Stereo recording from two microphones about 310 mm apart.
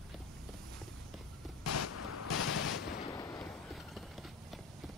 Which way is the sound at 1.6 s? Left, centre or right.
Left.